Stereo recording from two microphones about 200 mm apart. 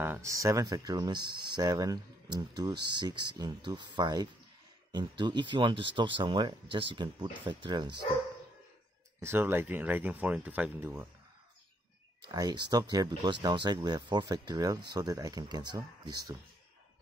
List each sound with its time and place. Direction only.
0.0 s speech: 10° right (ahead or behind)
9.2 s speech: 10° right (ahead or behind)
12.3 s speech: 20° right (ahead or behind)